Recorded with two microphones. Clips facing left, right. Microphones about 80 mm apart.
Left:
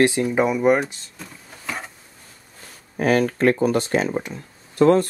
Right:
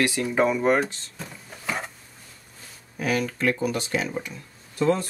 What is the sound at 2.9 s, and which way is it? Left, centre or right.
Speech, left.